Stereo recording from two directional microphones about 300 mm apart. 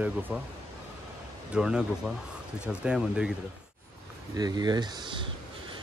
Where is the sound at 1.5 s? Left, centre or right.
Centre.